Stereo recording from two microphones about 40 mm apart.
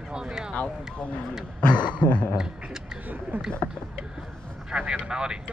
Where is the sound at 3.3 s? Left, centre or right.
Right.